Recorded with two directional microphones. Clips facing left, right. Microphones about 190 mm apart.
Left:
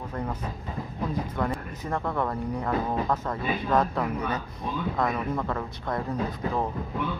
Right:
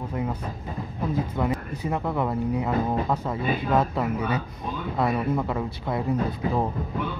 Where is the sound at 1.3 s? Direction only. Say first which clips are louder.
Right 3 dB; 10° right (ahead or behind).